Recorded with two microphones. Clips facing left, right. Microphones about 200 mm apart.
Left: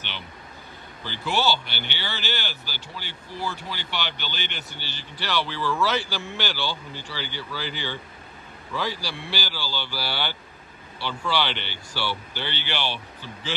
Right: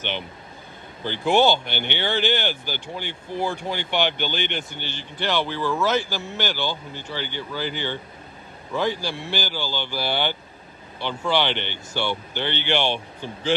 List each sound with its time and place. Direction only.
1.0 s speech: 55° right (ahead or behind)
5.5 s speech: 15° right (ahead or behind)
5.9 s speech: 50° right (ahead or behind)
6.5 s speech: 15° right (ahead or behind)
7.2 s speech: 55° right (ahead or behind)
9.1 s speech: 45° right (ahead or behind)
9.5 s speech: 20° right (ahead or behind)
11.5 s speech: 55° right (ahead or behind)
11.9 s speech: 20° right (ahead or behind)
12.4 s speech: 55° right (ahead or behind)
12.8 s speech: 20° right (ahead or behind)